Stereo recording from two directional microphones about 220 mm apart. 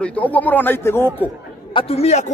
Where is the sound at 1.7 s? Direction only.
25° left (ahead or behind).